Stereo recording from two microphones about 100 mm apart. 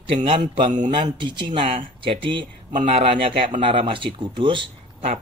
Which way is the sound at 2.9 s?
80° right.